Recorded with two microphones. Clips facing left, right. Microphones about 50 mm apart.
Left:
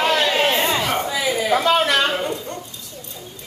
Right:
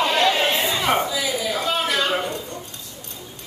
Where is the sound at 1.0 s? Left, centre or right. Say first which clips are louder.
Left 3 dB; left.